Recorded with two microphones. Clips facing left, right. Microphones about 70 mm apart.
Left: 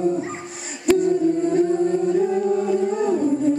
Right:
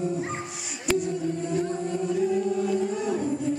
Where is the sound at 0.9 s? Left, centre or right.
Left.